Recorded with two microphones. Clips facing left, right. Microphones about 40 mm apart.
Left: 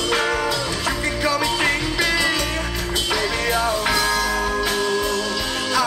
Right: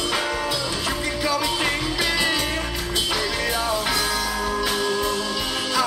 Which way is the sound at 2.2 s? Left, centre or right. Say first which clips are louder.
Left 2 dB; right.